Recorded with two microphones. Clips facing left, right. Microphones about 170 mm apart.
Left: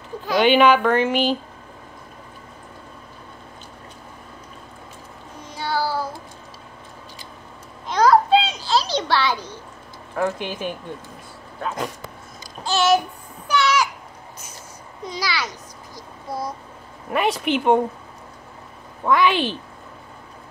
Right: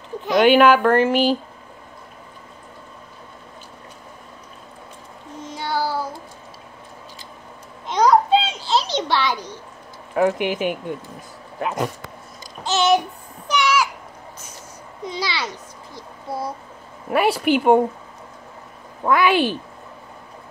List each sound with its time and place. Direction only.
0.4 s speech: 5° right (ahead or behind)
5.5 s child singing: 20° right (ahead or behind)
7.8 s a sound: 20° right (ahead or behind)
10.1 s speech: 15° right (ahead or behind)
12.6 s a sound: 20° right (ahead or behind)
15.0 s a child's voice: 25° right (ahead or behind)
17.1 s speech: 5° right (ahead or behind)
19.0 s speech: 5° right (ahead or behind)